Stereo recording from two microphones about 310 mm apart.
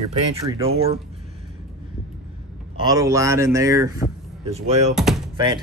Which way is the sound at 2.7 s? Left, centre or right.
Centre.